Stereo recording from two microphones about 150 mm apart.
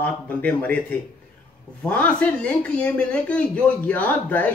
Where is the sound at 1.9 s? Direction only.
10° left (ahead or behind).